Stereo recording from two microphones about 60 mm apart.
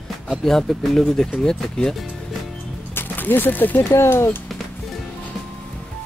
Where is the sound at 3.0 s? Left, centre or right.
Left.